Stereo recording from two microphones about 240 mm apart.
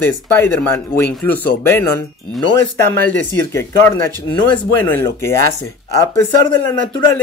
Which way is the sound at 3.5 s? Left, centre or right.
Centre.